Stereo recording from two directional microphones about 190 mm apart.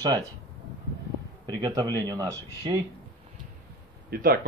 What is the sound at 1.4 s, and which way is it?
Speech, 20° right (ahead or behind).